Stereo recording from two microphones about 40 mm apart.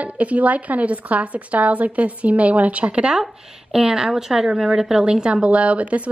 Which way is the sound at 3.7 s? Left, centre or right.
Centre.